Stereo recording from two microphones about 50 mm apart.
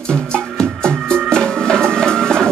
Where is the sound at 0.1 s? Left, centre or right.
Centre.